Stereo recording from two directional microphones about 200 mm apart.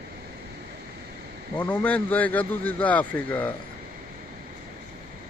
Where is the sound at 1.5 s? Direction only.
5° left (ahead or behind).